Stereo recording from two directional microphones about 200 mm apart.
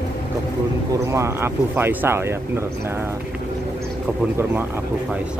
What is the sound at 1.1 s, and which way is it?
Speech, 15° right (ahead or behind).